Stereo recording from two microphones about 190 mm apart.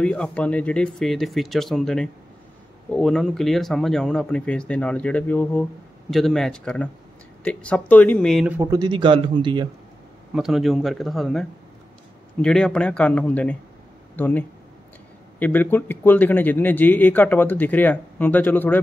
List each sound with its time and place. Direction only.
0.0 s a man's voice: 5° left (ahead or behind)
8.5 s a man's voice: 20° right (ahead or behind)
10.3 s a man's voice: centre (ahead or behind)